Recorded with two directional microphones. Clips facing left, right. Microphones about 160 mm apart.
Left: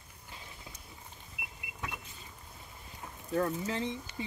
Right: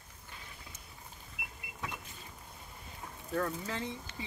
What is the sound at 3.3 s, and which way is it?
Speech, 25° left (ahead or behind).